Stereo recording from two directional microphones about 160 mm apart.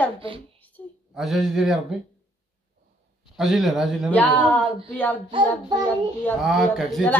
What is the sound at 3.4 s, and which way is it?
Speech, centre (ahead or behind).